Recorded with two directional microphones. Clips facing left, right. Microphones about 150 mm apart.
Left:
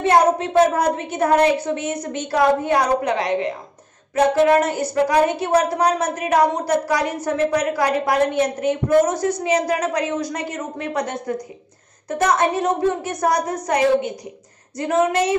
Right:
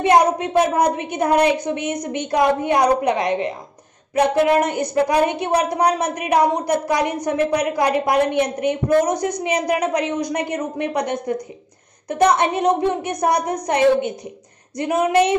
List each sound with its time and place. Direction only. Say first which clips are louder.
0.0 s a woman's voice: right 1 dB; 15° right (ahead or behind)